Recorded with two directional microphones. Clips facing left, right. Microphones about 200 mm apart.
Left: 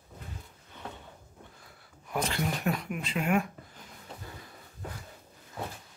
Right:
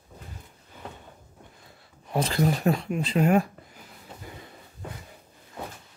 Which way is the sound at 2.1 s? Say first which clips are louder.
Right 7 dB; 35° right (ahead or behind).